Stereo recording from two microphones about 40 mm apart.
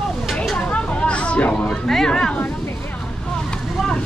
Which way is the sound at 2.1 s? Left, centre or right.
Left.